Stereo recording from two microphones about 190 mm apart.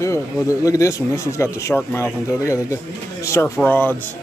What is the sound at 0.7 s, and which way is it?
Speech, 15° left (ahead or behind).